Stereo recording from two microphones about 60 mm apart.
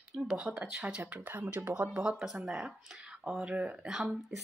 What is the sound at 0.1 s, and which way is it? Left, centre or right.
Speech, centre.